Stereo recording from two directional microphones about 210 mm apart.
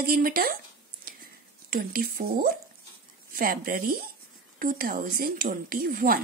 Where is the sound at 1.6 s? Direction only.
45° right (ahead or behind).